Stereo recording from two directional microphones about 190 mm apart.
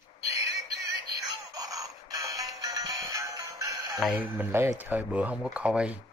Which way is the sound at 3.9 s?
5° right (ahead or behind).